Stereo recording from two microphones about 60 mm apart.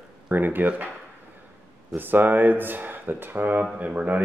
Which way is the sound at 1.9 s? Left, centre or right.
Right.